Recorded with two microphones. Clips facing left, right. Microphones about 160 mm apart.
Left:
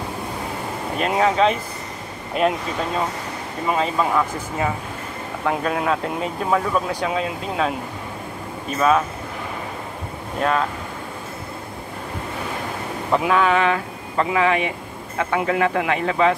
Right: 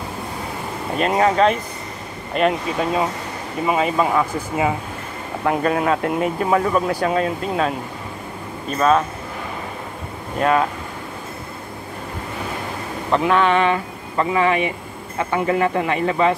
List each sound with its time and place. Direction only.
0.9 s speech: centre (ahead or behind)
3.6 s speech: 10° right (ahead or behind)
10.4 s speech: centre (ahead or behind)
13.1 s speech: 5° left (ahead or behind)